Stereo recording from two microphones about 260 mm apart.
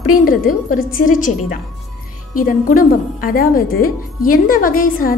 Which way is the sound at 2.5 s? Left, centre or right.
Left.